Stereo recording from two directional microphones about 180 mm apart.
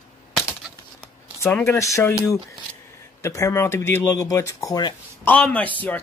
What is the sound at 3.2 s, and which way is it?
Speech, 15° left (ahead or behind).